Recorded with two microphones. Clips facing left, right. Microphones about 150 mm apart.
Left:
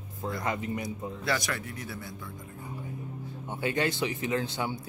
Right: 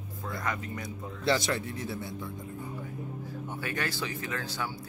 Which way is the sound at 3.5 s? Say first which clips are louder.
Left 6 dB; 20° left (ahead or behind).